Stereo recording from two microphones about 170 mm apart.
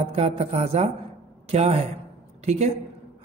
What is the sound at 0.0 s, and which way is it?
Speech, 40° right (ahead or behind).